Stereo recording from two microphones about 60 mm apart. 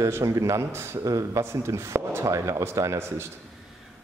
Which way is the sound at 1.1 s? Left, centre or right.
Right.